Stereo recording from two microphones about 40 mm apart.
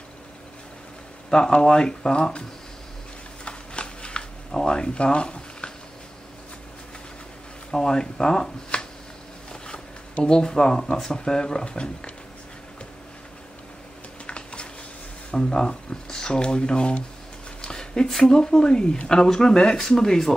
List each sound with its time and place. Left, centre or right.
1.3 s speech: left
3.4 s shuffling cards: left
7.7 s speech: centre
10.2 s speech: centre
14.2 s a sound: left
15.3 s speech: left
17.6 s a sound: centre
18.2 s speech: centre